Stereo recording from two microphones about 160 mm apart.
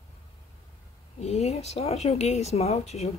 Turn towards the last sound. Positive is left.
turn(degrees=40)  # may be behind; listen again after turning